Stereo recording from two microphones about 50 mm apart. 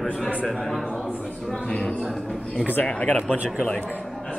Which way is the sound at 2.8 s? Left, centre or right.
Left.